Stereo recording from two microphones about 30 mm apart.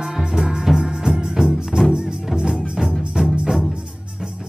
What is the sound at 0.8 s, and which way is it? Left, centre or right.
Music, right.